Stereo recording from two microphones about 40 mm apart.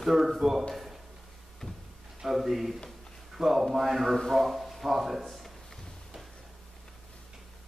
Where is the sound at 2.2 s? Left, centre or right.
Centre.